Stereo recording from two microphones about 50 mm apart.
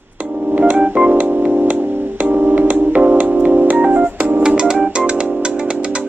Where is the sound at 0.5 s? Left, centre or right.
Right.